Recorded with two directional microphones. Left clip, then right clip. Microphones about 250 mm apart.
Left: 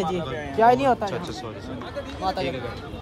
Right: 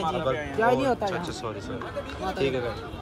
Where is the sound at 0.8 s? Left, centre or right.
Centre.